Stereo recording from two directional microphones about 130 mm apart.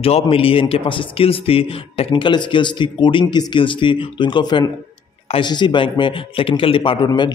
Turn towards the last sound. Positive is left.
turn(degrees=35)  # may be behind; listen again after turning